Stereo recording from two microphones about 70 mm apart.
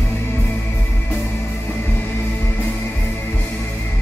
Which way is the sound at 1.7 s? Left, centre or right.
Left.